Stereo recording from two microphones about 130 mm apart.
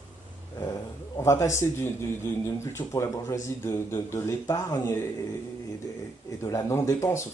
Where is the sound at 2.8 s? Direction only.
25° left (ahead or behind).